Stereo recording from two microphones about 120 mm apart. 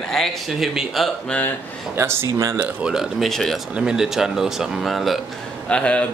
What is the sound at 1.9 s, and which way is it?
Speech, 20° right (ahead or behind).